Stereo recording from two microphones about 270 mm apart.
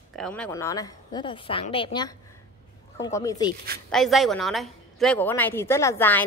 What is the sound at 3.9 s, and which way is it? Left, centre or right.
A woman's voice, centre.